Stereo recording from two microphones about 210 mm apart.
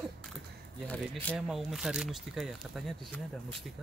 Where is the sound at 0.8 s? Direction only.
5° left (ahead or behind).